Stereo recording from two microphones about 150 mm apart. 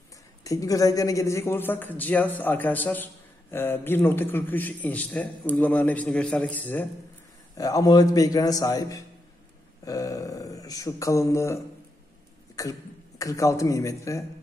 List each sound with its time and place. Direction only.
0.4 s a man's voice: 25° left (ahead or behind)
7.5 s speech: 25° left (ahead or behind)